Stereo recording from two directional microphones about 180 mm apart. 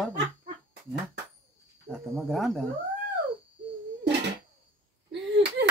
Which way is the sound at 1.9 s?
Centre (ahead or behind).